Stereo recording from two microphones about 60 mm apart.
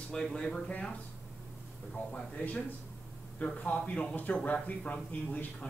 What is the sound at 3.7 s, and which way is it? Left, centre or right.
A man's voice, centre.